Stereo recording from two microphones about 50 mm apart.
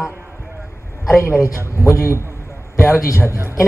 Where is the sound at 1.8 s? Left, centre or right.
Left.